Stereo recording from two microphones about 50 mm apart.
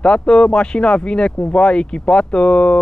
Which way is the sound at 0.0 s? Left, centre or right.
Centre.